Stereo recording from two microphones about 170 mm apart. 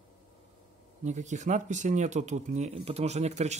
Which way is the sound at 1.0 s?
45° right (ahead or behind).